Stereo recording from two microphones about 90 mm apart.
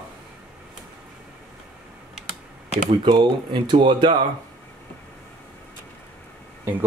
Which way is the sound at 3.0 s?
60° right (ahead or behind).